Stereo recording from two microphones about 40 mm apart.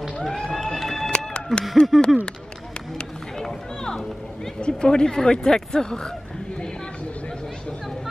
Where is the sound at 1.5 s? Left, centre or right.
Centre.